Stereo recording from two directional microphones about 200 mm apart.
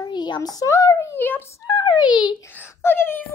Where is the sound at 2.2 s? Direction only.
10° left (ahead or behind).